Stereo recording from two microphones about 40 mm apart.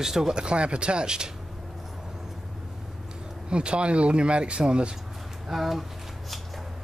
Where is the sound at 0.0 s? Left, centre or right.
Centre.